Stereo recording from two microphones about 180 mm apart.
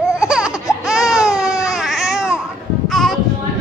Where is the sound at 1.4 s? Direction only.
15° left (ahead or behind).